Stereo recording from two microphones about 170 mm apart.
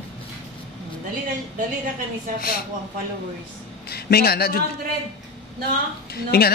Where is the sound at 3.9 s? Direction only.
70° left (ahead or behind).